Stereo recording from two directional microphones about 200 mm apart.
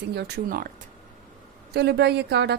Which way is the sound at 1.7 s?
55° right (ahead or behind).